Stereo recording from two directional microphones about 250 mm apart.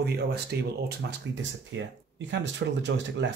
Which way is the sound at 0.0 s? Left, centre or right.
Right.